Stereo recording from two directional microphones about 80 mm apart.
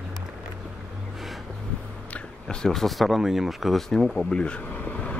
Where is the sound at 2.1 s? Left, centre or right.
Centre.